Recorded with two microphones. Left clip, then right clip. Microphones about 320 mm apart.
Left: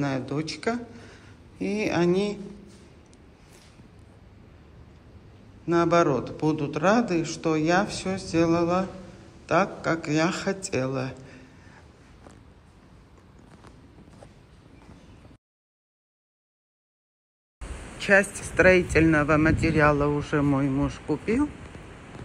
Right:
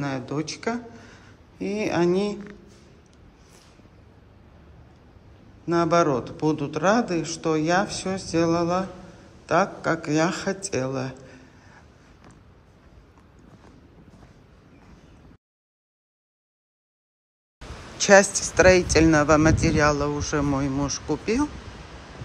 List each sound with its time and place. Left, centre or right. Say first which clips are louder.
0.0 s speech: even; centre
5.7 s a man's voice: right 1 dB; centre
18.6 s a man's voice: right 2 dB; centre